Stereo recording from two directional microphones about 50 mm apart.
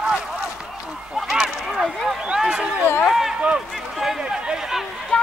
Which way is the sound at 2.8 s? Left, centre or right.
Left.